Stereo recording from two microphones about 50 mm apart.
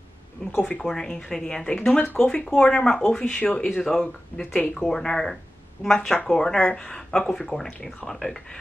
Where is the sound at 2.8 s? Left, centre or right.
Centre.